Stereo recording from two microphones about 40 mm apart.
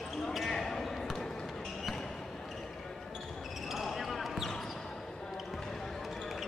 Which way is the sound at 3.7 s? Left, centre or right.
Centre.